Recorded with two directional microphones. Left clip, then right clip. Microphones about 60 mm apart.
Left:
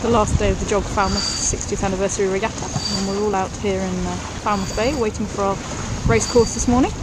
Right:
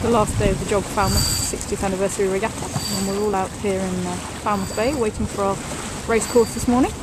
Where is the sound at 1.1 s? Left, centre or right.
Right.